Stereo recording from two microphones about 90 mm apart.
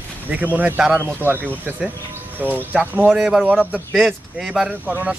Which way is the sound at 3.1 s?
5° right (ahead or behind).